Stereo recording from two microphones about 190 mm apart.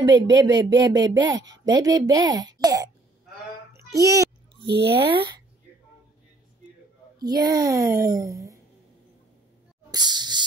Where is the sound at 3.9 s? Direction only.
15° right (ahead or behind).